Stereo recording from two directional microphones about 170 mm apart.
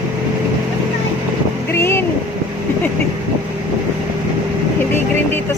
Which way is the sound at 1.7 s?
15° left (ahead or behind).